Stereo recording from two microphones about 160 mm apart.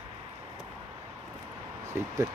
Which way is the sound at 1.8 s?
15° right (ahead or behind).